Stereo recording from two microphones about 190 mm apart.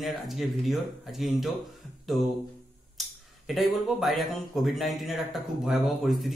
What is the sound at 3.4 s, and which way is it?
Speech, centre (ahead or behind).